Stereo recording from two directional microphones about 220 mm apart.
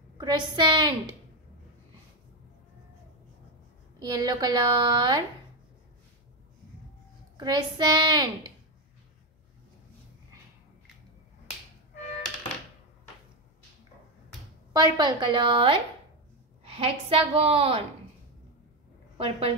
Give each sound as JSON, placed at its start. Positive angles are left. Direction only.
{"t": 0.2, "sound": "a woman's voice", "side_deg": -20}
{"t": 4.0, "sound": "a woman's voice", "side_deg": -20}
{"t": 7.3, "sound": "a woman's voice", "side_deg": -20}
{"t": 14.7, "sound": "a woman's voice", "side_deg": -20}
{"t": 19.1, "sound": "a woman's voice", "side_deg": -25}